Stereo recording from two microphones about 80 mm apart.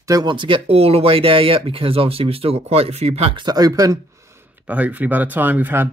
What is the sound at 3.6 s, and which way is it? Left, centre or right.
Speech, right.